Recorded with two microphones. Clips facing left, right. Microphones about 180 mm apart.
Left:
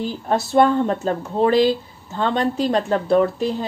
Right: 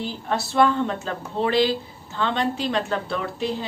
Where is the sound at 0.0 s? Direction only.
45° left (ahead or behind).